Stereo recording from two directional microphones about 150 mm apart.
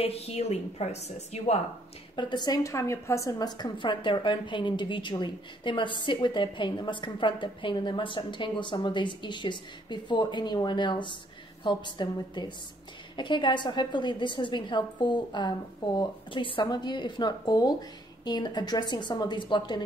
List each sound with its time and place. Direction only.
0.0 s a woman's voice: 40° left (ahead or behind)
2.1 s a woman's voice: 30° left (ahead or behind)